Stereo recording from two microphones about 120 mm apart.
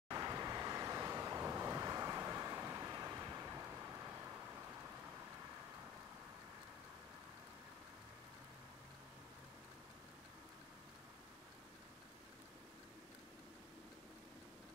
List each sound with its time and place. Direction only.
0.1 s vehicle: 30° right (ahead or behind)